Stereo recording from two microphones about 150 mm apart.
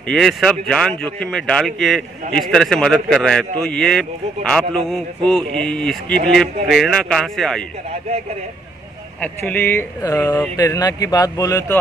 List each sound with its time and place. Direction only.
0.1 s speech: centre (ahead or behind)
9.2 s a man's voice: 10° left (ahead or behind)